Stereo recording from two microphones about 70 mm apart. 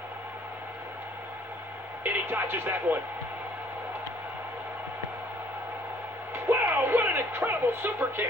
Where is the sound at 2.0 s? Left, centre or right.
Right.